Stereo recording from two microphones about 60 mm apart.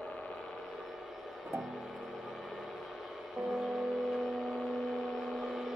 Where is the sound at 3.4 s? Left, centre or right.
Centre.